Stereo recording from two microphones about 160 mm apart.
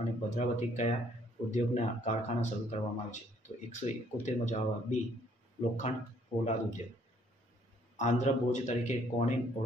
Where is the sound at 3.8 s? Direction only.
45° left (ahead or behind).